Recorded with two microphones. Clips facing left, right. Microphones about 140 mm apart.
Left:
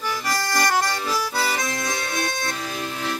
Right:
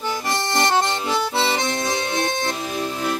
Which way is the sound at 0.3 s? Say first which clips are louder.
Right 2 dB; 25° right (ahead or behind).